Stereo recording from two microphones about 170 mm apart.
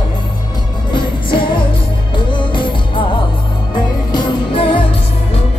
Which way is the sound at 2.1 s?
30° left (ahead or behind).